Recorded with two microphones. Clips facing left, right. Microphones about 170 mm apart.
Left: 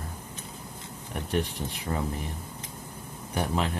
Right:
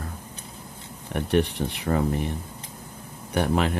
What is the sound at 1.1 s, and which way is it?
Speech, 70° right (ahead or behind).